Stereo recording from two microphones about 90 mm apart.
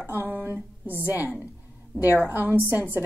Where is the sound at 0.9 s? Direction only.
25° left (ahead or behind).